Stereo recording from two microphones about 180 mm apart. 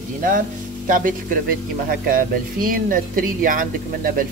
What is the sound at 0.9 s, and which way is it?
Speech, 50° right (ahead or behind).